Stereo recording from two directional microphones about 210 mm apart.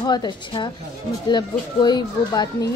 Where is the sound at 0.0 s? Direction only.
20° left (ahead or behind).